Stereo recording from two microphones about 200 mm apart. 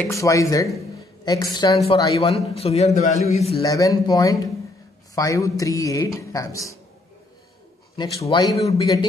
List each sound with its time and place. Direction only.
0.0 s a woman's voice: 15° left (ahead or behind); by 3.5 s 35° left (ahead or behind)
3.6 s speech: 15° left (ahead or behind)
7.9 s a woman's voice: 25° left (ahead or behind)